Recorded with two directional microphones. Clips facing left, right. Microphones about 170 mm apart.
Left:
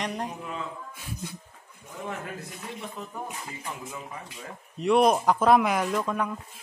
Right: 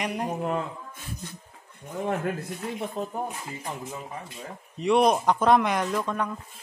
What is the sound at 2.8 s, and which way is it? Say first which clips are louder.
Speech: right 7 dB; 45° right (ahead or behind).